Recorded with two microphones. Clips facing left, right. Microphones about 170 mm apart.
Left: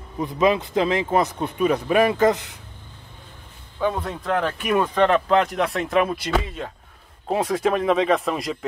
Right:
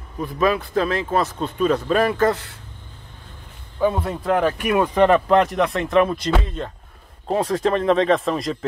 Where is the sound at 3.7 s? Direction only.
5° right (ahead or behind).